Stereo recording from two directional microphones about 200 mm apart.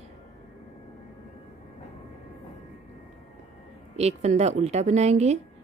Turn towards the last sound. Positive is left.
turn(degrees=-35)  # may be behind; listen again after turning